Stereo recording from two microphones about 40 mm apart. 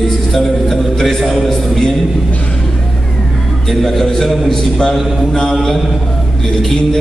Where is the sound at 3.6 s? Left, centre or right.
Centre.